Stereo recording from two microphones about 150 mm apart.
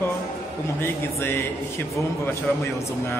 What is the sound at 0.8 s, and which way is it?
Speech, 15° left (ahead or behind).